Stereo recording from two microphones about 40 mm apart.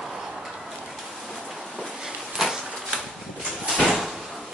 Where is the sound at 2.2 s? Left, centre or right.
Centre.